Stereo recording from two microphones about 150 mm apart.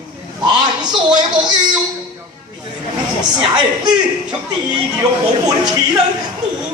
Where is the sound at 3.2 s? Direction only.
30° right (ahead or behind).